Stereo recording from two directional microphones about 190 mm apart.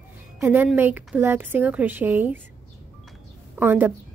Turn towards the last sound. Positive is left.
turn(degrees=-10)  # may be behind; listen again after turning